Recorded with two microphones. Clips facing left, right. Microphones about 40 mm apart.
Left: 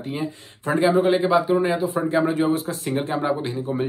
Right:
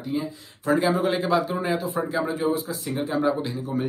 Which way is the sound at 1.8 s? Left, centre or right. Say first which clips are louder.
Left 5 dB; left.